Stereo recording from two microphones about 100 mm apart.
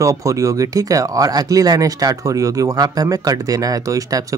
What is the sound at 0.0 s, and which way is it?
Speech, 30° right (ahead or behind).